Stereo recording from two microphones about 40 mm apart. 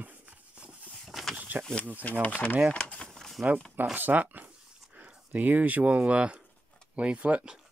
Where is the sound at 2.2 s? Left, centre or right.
Left.